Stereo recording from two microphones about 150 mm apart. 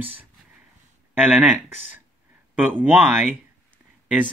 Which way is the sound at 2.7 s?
10° right (ahead or behind).